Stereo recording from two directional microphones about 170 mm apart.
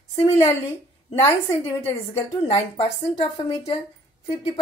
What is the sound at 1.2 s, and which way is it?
Speech, 15° left (ahead or behind).